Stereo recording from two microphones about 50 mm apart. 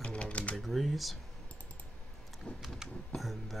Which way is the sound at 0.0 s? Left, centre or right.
Left.